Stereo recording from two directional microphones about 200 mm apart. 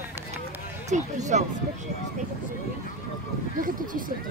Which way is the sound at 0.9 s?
35° right (ahead or behind).